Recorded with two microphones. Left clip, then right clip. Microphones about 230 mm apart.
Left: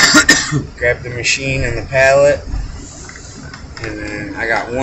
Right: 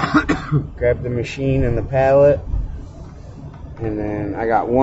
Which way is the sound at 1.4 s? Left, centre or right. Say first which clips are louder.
Left 1 dB; right.